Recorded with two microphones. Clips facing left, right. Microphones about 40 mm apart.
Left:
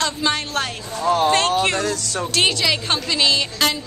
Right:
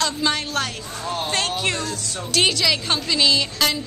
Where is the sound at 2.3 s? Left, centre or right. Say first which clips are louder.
Even; centre.